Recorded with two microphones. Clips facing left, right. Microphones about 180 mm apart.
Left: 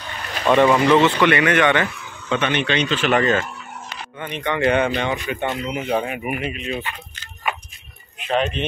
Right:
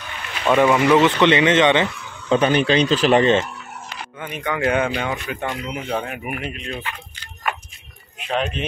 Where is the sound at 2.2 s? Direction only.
35° right (ahead or behind).